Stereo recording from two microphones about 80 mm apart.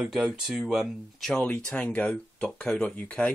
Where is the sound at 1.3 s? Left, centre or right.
Centre.